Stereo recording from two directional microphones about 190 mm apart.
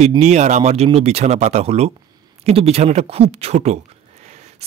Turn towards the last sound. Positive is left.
turn(degrees=-35)  # may be behind; listen again after turning